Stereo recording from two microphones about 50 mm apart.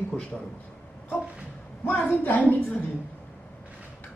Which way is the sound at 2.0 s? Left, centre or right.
Left.